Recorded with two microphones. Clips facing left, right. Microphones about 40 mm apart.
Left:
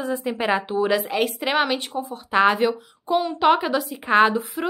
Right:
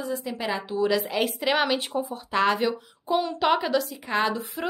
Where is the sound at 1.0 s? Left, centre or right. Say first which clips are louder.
Left 3 dB; centre.